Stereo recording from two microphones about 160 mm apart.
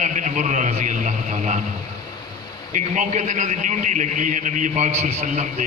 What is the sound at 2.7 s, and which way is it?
A man's voice, 50° right (ahead or behind).